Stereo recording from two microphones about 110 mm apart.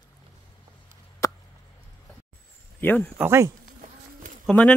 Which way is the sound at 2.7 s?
15° left (ahead or behind).